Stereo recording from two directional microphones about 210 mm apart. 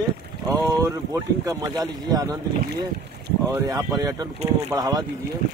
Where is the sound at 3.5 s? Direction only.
15° right (ahead or behind).